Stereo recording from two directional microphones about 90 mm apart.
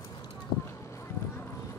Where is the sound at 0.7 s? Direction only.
35° left (ahead or behind).